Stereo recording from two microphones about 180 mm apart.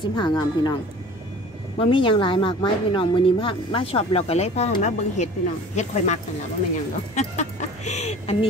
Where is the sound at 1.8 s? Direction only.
30° left (ahead or behind).